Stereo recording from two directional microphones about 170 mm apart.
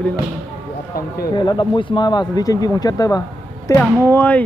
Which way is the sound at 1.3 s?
25° left (ahead or behind).